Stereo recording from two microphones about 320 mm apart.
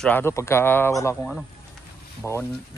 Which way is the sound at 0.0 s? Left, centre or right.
Centre.